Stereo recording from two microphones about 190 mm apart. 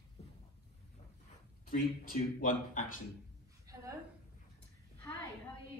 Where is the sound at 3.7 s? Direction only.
20° right (ahead or behind).